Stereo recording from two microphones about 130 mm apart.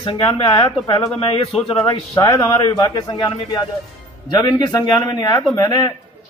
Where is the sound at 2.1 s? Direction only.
25° left (ahead or behind).